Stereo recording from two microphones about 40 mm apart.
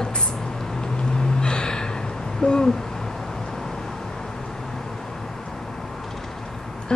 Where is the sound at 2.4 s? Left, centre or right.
Left.